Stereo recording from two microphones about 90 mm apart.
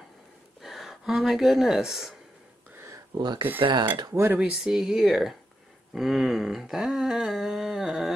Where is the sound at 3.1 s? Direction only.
55° right (ahead or behind).